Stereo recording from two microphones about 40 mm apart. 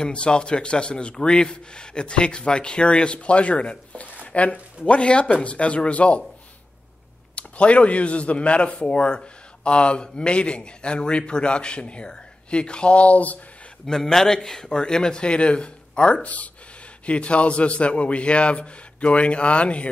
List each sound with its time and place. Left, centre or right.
0.0 s speech: left
7.3 s speech: left
13.8 s a man's voice: centre; by 19.9 s left